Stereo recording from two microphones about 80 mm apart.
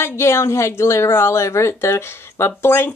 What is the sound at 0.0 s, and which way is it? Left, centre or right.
Speech, left.